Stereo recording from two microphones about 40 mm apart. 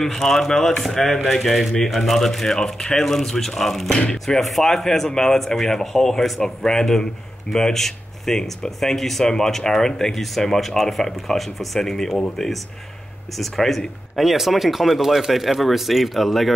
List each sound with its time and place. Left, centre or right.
0.0 s speech: centre